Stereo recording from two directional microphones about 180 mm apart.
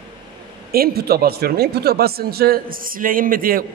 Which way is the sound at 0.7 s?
60° right (ahead or behind).